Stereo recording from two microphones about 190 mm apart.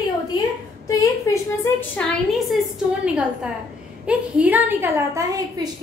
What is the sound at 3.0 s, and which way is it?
A woman's voice, 5° right (ahead or behind).